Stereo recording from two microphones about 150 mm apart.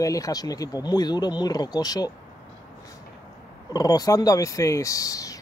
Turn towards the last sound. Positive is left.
turn(degrees=20)  # may be behind; listen again after turning